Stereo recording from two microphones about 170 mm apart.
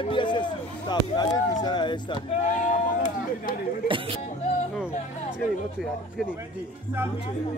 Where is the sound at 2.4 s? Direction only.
50° left (ahead or behind).